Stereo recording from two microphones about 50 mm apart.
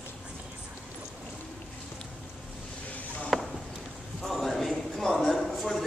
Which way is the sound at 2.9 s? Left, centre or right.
Left.